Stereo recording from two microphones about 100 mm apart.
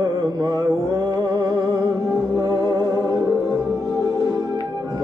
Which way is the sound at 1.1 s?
45° right (ahead or behind).